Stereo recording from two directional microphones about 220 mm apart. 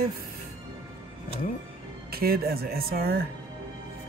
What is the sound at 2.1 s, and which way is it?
Speech, 45° right (ahead or behind).